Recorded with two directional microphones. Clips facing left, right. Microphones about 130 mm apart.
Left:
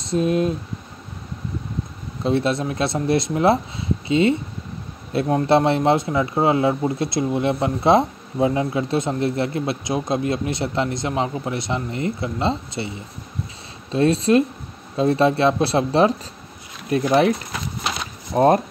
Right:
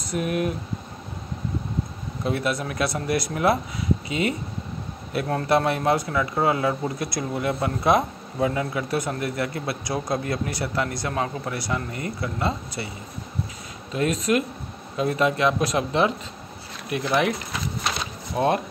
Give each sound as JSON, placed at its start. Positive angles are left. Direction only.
{"t": 0.0, "sound": "a man's voice", "side_deg": 25}
{"t": 2.2, "sound": "a man's voice", "side_deg": 25}
{"t": 13.9, "sound": "speech", "side_deg": 30}
{"t": 18.3, "sound": "speech", "side_deg": 40}